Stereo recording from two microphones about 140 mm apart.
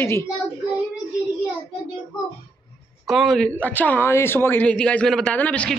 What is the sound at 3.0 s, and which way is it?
Speech, 5° right (ahead or behind).